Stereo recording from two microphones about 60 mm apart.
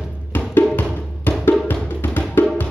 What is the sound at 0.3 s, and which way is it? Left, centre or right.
Music, left.